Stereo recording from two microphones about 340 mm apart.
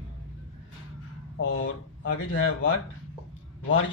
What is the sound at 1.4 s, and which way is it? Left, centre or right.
A man's voice, left.